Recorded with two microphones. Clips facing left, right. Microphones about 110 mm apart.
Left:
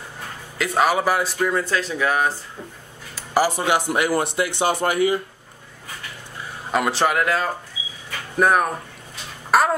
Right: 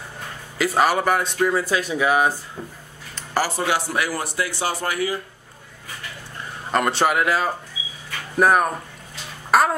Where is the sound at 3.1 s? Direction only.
15° left (ahead or behind).